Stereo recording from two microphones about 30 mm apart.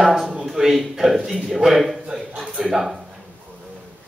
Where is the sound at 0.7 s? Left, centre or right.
Centre.